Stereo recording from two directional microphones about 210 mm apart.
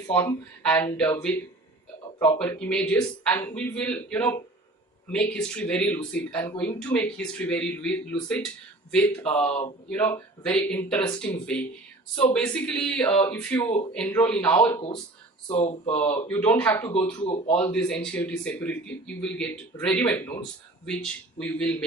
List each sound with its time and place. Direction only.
0.1 s a man's voice: 5° left (ahead or behind)
2.3 s a man's voice: 5° left (ahead or behind)
9.5 s speech: 25° left (ahead or behind)
9.8 s a man's voice: 10° left (ahead or behind)
15.4 s speech: 30° left (ahead or behind)
16.2 s a man's voice: 10° left (ahead or behind)
17.2 s speech: 30° left (ahead or behind)
17.6 s speech: 5° left (ahead or behind)